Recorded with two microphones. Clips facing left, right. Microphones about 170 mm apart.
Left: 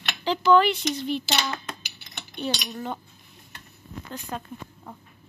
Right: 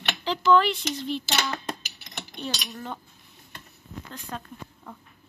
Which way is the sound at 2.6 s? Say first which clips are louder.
Left 4 dB; 5° left (ahead or behind).